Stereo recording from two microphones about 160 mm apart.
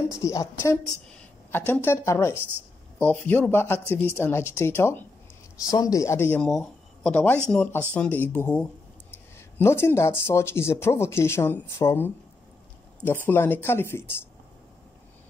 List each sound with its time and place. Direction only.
0.1 s speech: 20° left (ahead or behind)
6.4 s speech: 5° left (ahead or behind)